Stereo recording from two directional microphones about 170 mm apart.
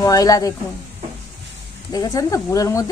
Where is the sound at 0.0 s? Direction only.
20° left (ahead or behind).